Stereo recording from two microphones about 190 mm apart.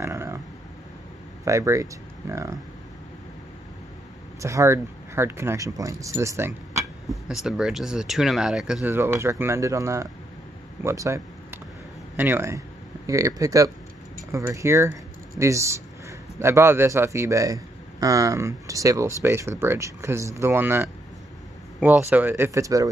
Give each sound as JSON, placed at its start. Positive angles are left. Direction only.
{"t": 0.0, "sound": "a sound", "side_deg": -15}
{"t": 1.4, "sound": "speech", "side_deg": -15}
{"t": 4.4, "sound": "speech", "side_deg": -15}
{"t": 6.8, "sound": "speech", "side_deg": 0}
{"t": 10.8, "sound": "a sound", "side_deg": -15}
{"t": 12.2, "sound": "speech", "side_deg": -10}